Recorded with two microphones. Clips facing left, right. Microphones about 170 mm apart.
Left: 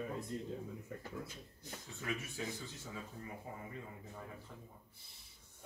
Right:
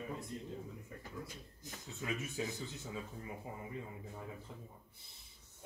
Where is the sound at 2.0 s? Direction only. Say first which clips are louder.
Right 2 dB; 20° right (ahead or behind).